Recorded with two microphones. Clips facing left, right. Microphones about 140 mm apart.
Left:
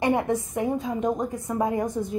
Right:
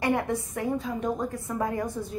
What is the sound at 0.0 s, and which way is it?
A woman's voice, 20° left (ahead or behind).